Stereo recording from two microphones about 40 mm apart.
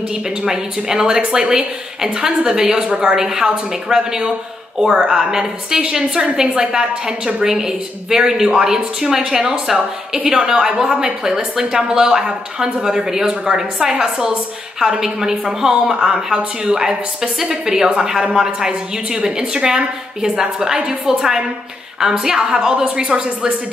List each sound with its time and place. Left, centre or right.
0.4 s speech: centre